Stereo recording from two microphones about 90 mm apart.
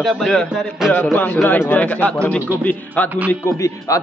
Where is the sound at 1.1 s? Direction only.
20° left (ahead or behind).